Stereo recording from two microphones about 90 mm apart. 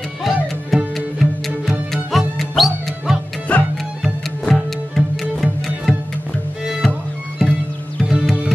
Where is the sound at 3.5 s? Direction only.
15° left (ahead or behind).